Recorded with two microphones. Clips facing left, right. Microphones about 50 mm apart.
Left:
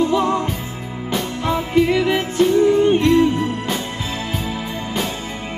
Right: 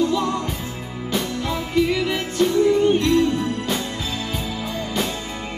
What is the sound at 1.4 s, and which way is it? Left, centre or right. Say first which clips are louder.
Music: left 5 dB; left.